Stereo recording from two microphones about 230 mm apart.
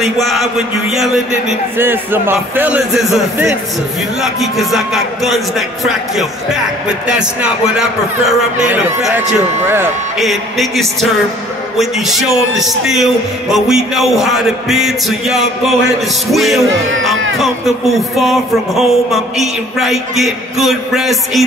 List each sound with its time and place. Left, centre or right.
0.0 s a man's voice: centre
16.7 s speech: right
17.4 s a man's voice: centre